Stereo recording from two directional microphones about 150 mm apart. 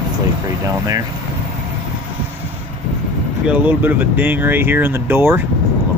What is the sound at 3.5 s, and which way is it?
Speech, 10° right (ahead or behind).